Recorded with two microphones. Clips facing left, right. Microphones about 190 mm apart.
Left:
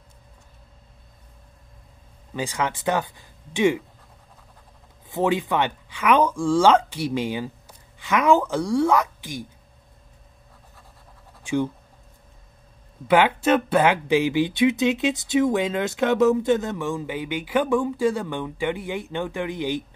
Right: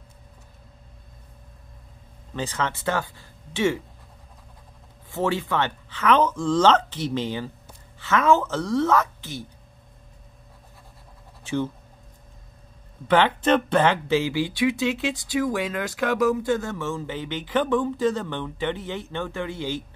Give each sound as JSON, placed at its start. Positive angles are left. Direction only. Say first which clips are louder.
{"t": 2.3, "sound": "speech", "louder": "left 1 dB", "side_deg": 10}
{"t": 5.1, "sound": "speech", "louder": "left 2 dB", "side_deg": 15}
{"t": 11.4, "sound": "speech", "louder": "left 3 dB", "side_deg": 15}
{"t": 13.1, "sound": "speech", "louder": "left 1 dB", "side_deg": 10}